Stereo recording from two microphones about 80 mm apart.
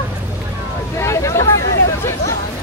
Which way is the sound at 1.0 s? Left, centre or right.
Left.